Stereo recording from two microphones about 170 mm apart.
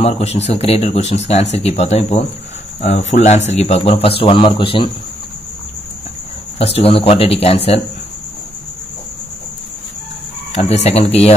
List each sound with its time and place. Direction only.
0.0 s speech: 40° left (ahead or behind)
6.6 s speech: 35° left (ahead or behind)
10.5 s speech: 40° left (ahead or behind)